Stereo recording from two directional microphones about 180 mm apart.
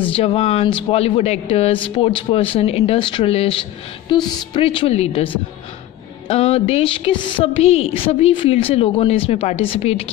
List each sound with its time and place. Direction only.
0.1 s speech: 30° left (ahead or behind)